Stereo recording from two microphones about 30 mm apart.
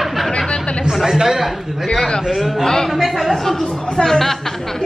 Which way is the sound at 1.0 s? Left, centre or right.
Centre.